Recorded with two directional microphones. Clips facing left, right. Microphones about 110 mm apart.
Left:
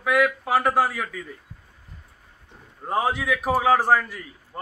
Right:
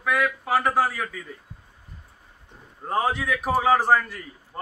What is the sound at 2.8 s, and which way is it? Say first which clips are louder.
A man's voice: left 1 dB; 10° left (ahead or behind).